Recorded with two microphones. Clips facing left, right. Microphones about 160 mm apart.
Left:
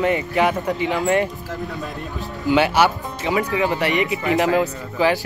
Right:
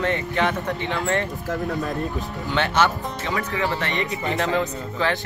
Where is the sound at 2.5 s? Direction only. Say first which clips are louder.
Left 5 dB; 10° left (ahead or behind).